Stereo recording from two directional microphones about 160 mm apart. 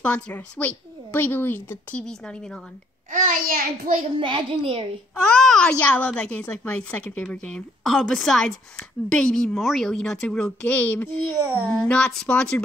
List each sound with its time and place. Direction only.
0.0 s a woman's voice: 10° left (ahead or behind)
3.1 s a child's voice: 60° right (ahead or behind)
3.9 s a child's voice: 35° right (ahead or behind)
5.2 s a woman's voice: 5° left (ahead or behind)